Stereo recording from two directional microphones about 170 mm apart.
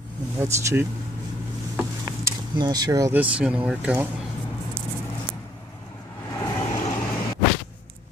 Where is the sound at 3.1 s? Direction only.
10° right (ahead or behind).